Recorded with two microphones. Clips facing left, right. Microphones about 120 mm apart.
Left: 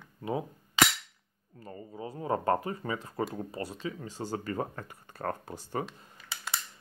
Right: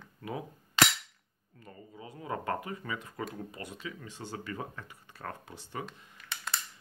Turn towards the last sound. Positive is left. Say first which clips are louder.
# even
turn(degrees=0)  # may be behind; listen again after turning